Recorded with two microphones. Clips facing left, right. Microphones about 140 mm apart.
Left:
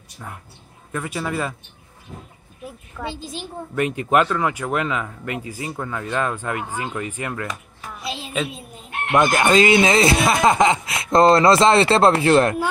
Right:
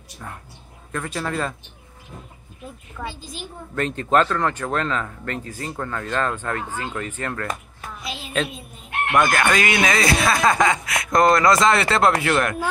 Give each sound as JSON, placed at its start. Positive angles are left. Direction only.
{"t": 0.9, "sound": "speech", "side_deg": 10}
{"t": 3.0, "sound": "speech", "side_deg": 25}
{"t": 3.7, "sound": "speech", "side_deg": 15}
{"t": 8.0, "sound": "a sound", "side_deg": 30}
{"t": 9.1, "sound": "speech", "side_deg": 20}